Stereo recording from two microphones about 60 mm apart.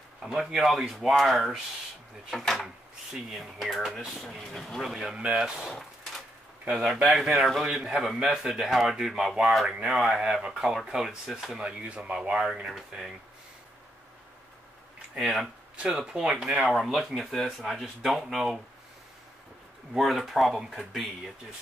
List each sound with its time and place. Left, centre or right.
0.2 s speech: centre
4.4 s speech: centre
4.8 s speech: centre
5.1 s speech: centre
5.6 s a sound: centre
6.6 s speech: centre
11.6 s speech: centre
15.7 s speech: centre
19.9 s speech: centre